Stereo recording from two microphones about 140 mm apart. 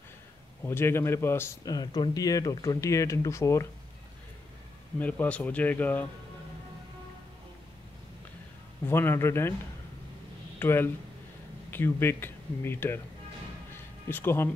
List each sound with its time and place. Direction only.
0.7 s speech: 15° left (ahead or behind)
4.9 s speech: 10° left (ahead or behind)
8.8 s speech: 15° left (ahead or behind)
10.6 s speech: 15° left (ahead or behind)
14.0 s speech: 15° left (ahead or behind)